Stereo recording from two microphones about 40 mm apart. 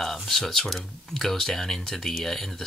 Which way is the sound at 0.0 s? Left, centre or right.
Centre.